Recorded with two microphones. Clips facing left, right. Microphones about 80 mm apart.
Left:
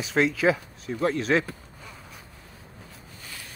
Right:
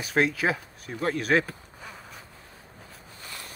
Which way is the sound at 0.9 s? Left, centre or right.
Right.